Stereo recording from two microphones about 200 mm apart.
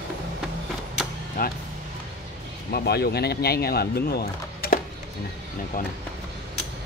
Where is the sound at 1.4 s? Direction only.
45° left (ahead or behind).